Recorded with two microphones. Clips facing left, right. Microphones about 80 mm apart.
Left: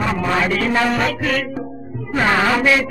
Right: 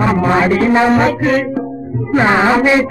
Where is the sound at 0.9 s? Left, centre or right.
Right.